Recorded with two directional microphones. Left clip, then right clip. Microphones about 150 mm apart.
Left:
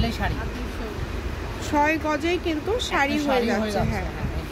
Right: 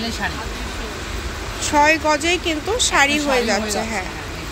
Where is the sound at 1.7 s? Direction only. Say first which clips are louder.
Right 7 dB; centre (ahead or behind).